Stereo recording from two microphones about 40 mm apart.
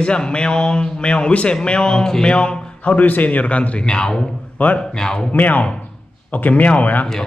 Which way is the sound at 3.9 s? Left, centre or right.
Left.